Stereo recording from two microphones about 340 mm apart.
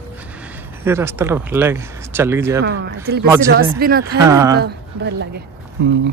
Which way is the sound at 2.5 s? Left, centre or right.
Right.